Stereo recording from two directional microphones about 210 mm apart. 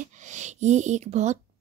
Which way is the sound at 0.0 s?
35° right (ahead or behind).